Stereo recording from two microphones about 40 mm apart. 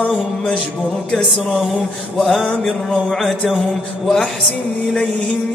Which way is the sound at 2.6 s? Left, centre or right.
Left.